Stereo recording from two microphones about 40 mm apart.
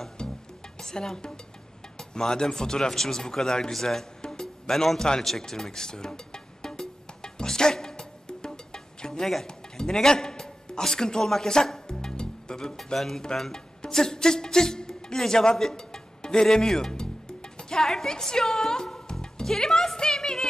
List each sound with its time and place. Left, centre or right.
0.2 s music: left
0.7 s speech: centre
3.7 s music: centre
4.8 s speech: centre
5.2 s music: centre
12.7 s music: centre